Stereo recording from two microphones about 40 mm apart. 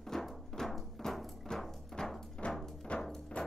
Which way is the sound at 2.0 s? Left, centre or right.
Centre.